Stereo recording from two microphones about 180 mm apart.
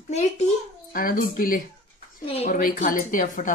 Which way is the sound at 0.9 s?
50° left (ahead or behind).